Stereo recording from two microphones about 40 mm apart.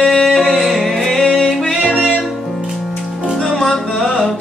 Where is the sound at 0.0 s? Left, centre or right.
Centre.